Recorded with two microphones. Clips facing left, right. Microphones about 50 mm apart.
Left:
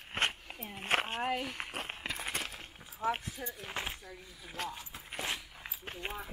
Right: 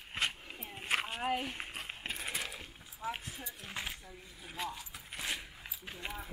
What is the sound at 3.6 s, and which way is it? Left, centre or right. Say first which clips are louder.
Speech: left 1 dB; left.